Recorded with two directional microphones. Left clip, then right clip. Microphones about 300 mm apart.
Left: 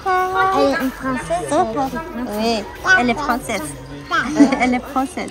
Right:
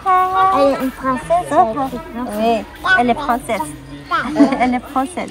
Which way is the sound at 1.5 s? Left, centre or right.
Centre.